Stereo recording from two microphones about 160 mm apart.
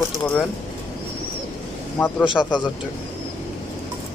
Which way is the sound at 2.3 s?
30° left (ahead or behind).